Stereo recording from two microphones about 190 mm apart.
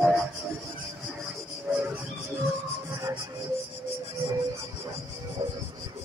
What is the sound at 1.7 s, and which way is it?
Music, 10° right (ahead or behind).